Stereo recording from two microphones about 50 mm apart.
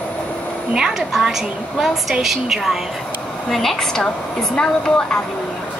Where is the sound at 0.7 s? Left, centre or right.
Centre.